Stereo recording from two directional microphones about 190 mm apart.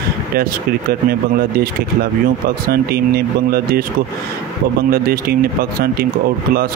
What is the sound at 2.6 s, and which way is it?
Speech, 55° right (ahead or behind).